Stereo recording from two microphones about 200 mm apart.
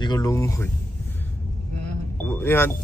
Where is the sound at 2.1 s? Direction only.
10° left (ahead or behind).